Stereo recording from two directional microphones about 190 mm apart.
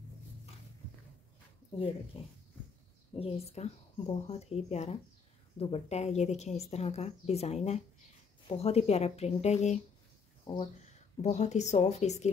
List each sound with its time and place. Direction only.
2.1 s a woman's voice: 30° left (ahead or behind)
10.5 s speech: 25° left (ahead or behind)
11.1 s a woman's voice: 40° left (ahead or behind)